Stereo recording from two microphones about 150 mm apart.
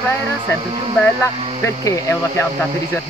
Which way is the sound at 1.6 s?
20° left (ahead or behind).